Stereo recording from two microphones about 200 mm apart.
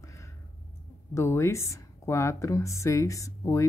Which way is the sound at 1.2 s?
15° left (ahead or behind).